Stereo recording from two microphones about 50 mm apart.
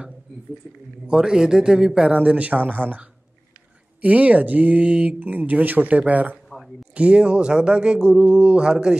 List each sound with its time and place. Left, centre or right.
1.0 s a man's voice: centre
2.1 s speech: right